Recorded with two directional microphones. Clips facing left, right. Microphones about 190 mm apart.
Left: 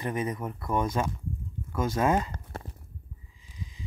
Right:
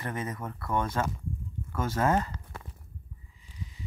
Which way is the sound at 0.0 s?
15° left (ahead or behind).